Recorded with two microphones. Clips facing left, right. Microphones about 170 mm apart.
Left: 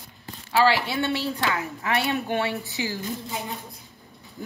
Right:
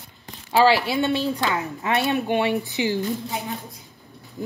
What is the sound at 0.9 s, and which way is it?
Speech, 15° right (ahead or behind).